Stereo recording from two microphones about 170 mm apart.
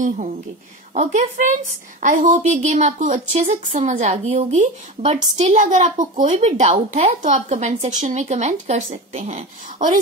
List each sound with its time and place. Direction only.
0.9 s a woman's voice: 45° right (ahead or behind)